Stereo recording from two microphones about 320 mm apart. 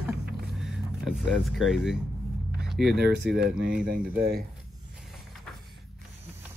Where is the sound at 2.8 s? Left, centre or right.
Right.